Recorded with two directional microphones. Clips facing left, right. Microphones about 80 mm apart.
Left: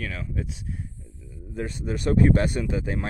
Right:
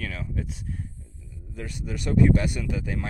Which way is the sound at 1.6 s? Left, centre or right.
Left.